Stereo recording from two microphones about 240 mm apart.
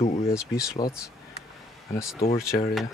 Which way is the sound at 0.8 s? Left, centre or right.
Left.